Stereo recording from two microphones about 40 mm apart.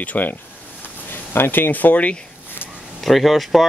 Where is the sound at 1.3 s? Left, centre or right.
Left.